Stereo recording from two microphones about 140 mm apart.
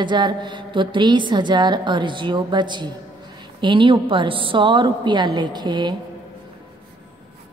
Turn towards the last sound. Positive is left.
turn(degrees=-30)  # may be behind; listen again after turning